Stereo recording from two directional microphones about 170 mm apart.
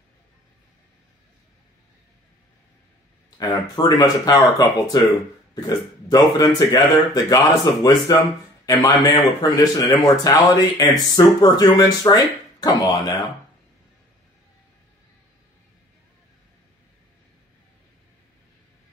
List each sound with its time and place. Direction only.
3.3 s a man's voice: 20° left (ahead or behind)